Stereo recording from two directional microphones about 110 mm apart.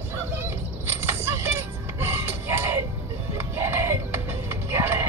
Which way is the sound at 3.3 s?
20° right (ahead or behind).